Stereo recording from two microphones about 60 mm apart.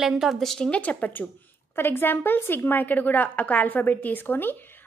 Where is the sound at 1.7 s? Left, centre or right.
Left.